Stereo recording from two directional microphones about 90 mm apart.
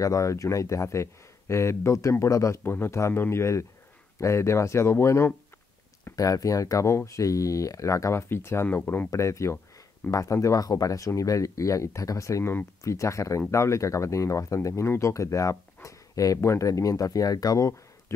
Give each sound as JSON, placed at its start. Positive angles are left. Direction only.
{"t": 0.0, "sound": "speech", "side_deg": 35}
{"t": 2.6, "sound": "speech", "side_deg": 25}
{"t": 6.1, "sound": "speech", "side_deg": 40}
{"t": 9.1, "sound": "speech", "side_deg": 35}